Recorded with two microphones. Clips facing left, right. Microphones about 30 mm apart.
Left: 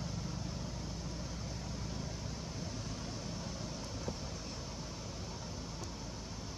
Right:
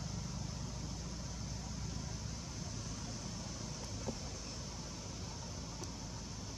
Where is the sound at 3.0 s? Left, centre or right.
Centre.